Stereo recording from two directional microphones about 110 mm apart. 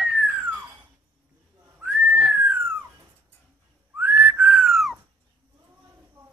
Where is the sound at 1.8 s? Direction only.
15° right (ahead or behind).